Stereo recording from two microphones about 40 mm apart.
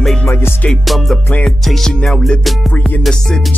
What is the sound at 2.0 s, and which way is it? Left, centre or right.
Music, left.